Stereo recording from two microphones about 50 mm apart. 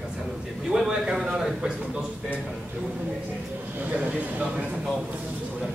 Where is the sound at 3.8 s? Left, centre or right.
Right.